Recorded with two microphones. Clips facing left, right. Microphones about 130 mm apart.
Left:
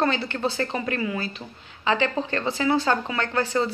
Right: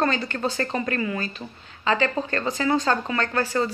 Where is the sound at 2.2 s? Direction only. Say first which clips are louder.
Even; 15° left (ahead or behind).